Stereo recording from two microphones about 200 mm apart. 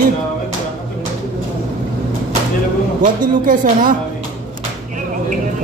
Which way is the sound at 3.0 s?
45° right (ahead or behind).